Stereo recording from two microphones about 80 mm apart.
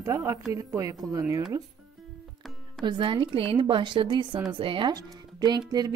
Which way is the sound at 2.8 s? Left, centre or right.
Right.